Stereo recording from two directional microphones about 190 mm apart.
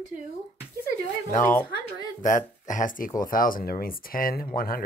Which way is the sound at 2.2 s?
40° left (ahead or behind).